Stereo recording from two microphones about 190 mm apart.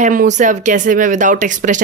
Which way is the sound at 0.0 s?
45° right (ahead or behind).